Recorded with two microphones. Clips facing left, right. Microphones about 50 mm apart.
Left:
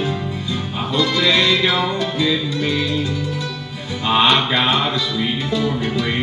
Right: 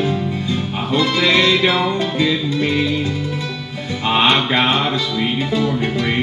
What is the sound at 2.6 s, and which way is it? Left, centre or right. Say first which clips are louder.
Music: right 2 dB; right.